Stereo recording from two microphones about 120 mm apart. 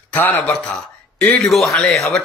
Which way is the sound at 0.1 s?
15° left (ahead or behind).